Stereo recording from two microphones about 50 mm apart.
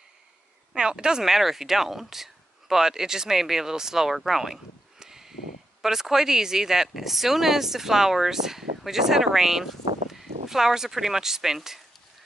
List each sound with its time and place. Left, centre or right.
0.7 s speech: centre